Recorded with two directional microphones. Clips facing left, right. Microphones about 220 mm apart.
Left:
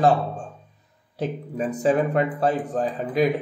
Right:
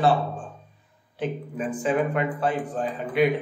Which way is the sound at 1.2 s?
40° left (ahead or behind).